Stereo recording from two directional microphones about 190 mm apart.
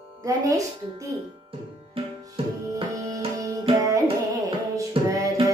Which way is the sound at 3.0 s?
20° right (ahead or behind).